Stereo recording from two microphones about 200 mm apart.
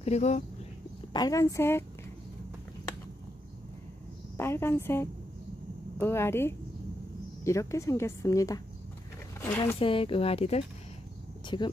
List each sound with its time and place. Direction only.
0.0 s speech: 35° left (ahead or behind)
1.1 s a woman's voice: 20° left (ahead or behind)
4.4 s a woman's voice: 10° left (ahead or behind)
9.8 s speech: 25° left (ahead or behind)